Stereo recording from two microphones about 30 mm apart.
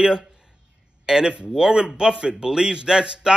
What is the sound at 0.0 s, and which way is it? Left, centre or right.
A man's voice, right.